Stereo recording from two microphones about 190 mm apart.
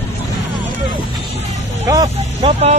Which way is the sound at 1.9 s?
20° right (ahead or behind).